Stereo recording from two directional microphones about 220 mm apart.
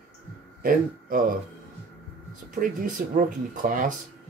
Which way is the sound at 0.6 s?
40° right (ahead or behind).